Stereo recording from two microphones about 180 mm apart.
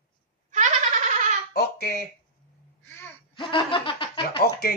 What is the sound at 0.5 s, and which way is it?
Goat, 40° right (ahead or behind).